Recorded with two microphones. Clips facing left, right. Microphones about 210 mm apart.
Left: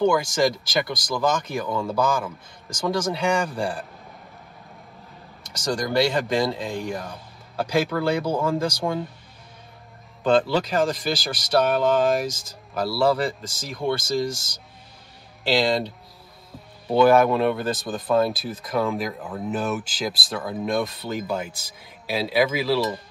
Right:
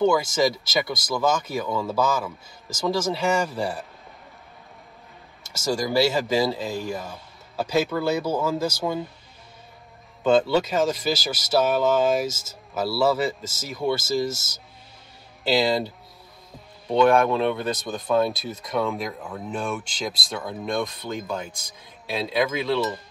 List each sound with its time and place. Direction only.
0.0 s speech: 5° right (ahead or behind)
5.5 s speech: 5° right (ahead or behind)
10.2 s speech: centre (ahead or behind)
12.3 s speech: 25° right (ahead or behind)
13.0 s speech: 5° right (ahead or behind)
15.5 s speech: 5° right (ahead or behind)
16.9 s speech: 5° left (ahead or behind)